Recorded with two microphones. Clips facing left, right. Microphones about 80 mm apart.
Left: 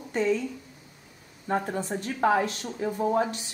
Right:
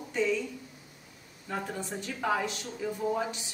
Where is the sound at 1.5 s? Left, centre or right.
Left.